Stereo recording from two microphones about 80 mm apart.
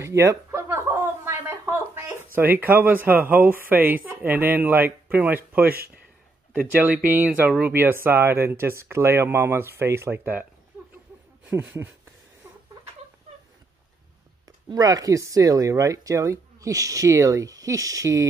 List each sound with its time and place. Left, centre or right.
0.0 s a sound: right
6.5 s speech: right
7.8 s speech: right
11.5 s speech: right
14.7 s speech: right